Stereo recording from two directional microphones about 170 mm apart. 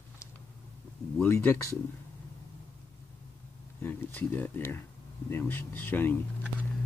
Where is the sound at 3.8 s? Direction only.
10° left (ahead or behind).